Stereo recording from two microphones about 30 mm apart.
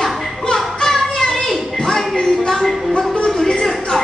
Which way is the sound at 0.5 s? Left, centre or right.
Centre.